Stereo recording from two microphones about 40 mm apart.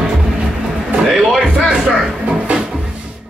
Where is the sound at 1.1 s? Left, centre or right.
Centre.